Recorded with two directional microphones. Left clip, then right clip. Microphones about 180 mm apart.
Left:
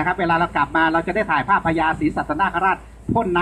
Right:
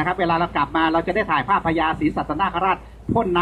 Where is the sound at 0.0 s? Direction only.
50° left (ahead or behind).